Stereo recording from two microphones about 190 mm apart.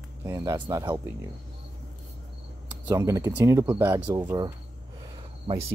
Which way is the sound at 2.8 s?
15° right (ahead or behind).